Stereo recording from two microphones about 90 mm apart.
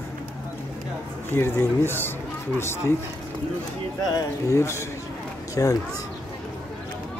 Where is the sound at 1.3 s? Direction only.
25° left (ahead or behind).